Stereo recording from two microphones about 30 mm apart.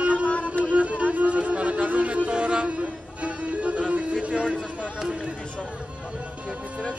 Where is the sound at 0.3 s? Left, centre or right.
Left.